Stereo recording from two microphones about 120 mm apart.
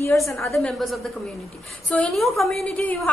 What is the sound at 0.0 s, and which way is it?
Speech, 25° left (ahead or behind).